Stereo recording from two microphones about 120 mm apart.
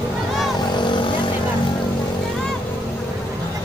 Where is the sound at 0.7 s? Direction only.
40° left (ahead or behind).